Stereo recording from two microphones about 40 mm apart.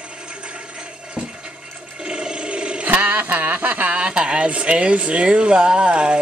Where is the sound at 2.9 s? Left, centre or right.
Right.